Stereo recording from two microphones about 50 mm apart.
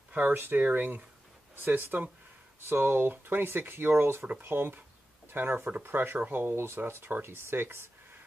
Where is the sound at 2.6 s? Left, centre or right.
Right.